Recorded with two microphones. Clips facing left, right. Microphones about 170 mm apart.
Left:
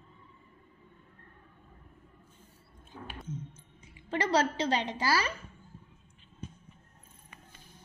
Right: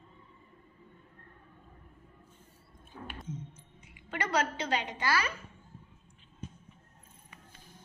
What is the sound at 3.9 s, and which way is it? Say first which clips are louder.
A woman's voice: left 4 dB; 35° left (ahead or behind).